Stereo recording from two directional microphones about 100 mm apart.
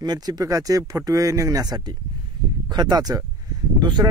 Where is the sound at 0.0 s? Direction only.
40° right (ahead or behind).